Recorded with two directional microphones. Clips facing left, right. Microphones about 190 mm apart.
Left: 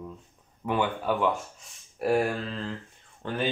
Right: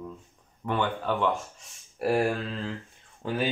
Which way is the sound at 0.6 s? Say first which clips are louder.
Left 1 dB; 10° left (ahead or behind).